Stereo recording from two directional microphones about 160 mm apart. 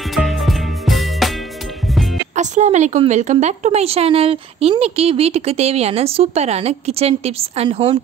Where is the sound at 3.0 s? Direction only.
45° right (ahead or behind).